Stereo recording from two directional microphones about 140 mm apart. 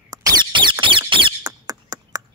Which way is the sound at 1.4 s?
25° right (ahead or behind).